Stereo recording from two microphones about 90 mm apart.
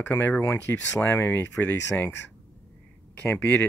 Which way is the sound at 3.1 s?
20° left (ahead or behind).